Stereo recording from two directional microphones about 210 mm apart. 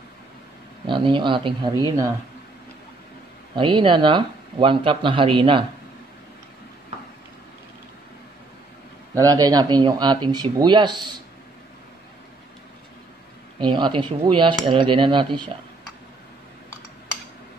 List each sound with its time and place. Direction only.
0.8 s speech: 25° right (ahead or behind)
3.5 s speech: 25° right (ahead or behind)
9.1 s speech: 15° right (ahead or behind)
13.6 s speech: 20° right (ahead or behind)